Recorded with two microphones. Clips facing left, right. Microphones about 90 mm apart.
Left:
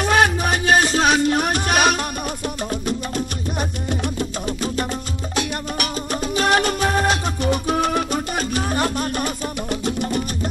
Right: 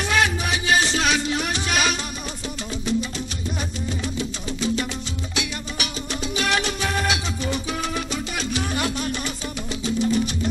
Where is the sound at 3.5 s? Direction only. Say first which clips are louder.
Left 5 dB; 55° left (ahead or behind).